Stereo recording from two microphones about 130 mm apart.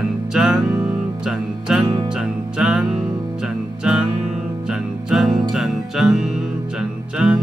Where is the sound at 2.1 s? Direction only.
5° right (ahead or behind).